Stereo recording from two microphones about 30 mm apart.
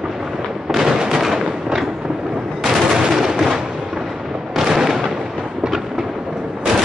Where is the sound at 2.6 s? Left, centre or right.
Centre.